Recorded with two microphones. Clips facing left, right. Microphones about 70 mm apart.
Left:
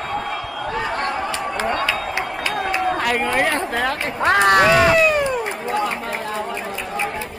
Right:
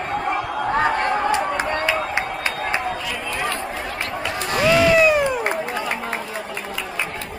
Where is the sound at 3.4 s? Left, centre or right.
Left.